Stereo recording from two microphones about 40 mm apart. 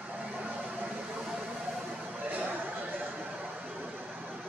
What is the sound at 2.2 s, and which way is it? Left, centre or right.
Chatter, right.